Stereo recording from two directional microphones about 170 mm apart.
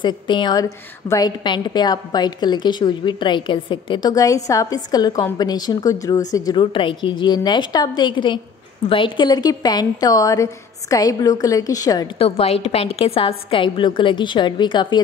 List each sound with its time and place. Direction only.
0.0 s a woman's voice: 25° left (ahead or behind)
12.2 s a woman's voice: 35° left (ahead or behind)